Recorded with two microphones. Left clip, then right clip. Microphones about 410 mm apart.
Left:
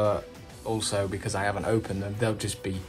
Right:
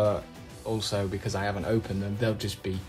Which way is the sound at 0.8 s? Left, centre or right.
Centre.